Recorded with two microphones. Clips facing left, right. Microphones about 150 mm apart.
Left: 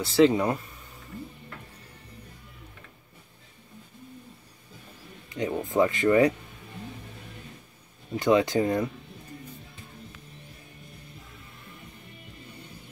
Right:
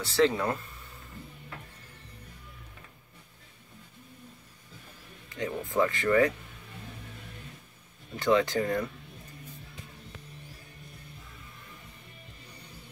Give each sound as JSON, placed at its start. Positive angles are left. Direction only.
{"t": 0.1, "sound": "speech", "side_deg": 15}
{"t": 5.3, "sound": "speech", "side_deg": 20}
{"t": 8.2, "sound": "speech", "side_deg": 15}